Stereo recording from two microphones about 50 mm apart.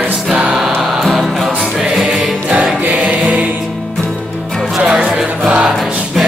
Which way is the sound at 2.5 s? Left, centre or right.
Centre.